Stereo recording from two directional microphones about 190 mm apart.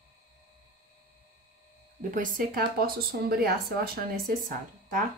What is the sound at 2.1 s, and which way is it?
Speech, 45° right (ahead or behind).